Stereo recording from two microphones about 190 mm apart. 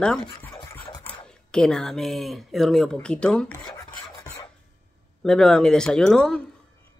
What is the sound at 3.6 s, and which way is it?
Filing, 15° left (ahead or behind).